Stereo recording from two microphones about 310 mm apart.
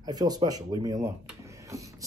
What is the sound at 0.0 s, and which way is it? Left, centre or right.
Speech, centre.